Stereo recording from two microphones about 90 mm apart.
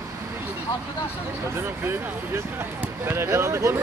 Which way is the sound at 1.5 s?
25° right (ahead or behind).